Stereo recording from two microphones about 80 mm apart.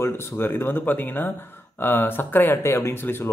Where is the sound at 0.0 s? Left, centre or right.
Left.